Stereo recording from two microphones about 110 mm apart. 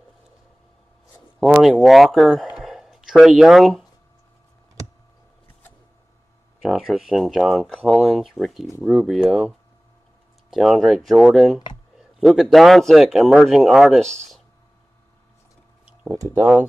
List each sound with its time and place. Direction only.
1.4 s speech: 5° right (ahead or behind)
6.6 s speech: 5° right (ahead or behind)
10.5 s speech: centre (ahead or behind)
15.8 s a sound: 10° right (ahead or behind)
16.2 s speech: 20° right (ahead or behind)